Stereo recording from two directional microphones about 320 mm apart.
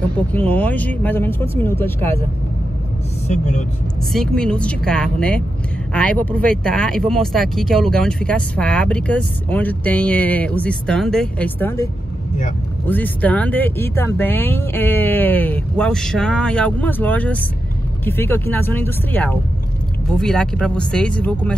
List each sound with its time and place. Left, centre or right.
0.3 s speech: centre
3.3 s speech: left
4.1 s speech: centre